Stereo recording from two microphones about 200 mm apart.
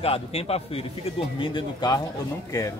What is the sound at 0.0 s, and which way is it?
Speech, 30° left (ahead or behind).